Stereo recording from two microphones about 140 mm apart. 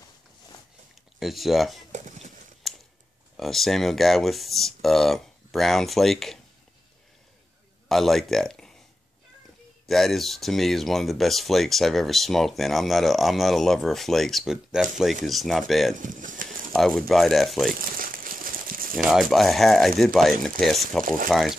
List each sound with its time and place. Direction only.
1.2 s speech: centre (ahead or behind)
1.9 s a sound: 60° right (ahead or behind)
2.6 s a sound: centre (ahead or behind)
3.3 s speech: centre (ahead or behind)
7.9 s speech: centre (ahead or behind)
9.8 s speech: centre (ahead or behind)
16.0 s bird: 70° right (ahead or behind)
16.7 s speech: 5° left (ahead or behind)
17.7 s crumpling: 85° right
19.0 s speech: 5° right (ahead or behind)